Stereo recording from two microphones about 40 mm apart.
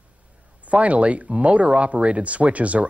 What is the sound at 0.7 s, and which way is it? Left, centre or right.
Speech, right.